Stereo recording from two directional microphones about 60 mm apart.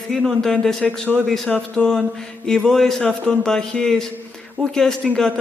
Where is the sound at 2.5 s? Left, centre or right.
Centre.